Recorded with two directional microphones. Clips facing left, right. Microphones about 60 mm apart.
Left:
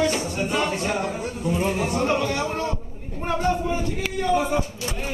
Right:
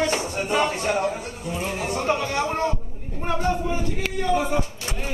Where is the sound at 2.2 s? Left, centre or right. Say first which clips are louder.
Right 1 dB; right.